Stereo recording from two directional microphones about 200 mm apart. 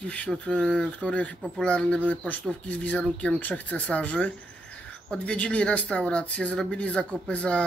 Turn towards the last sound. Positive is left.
turn(degrees=5)  # may be behind; listen again after turning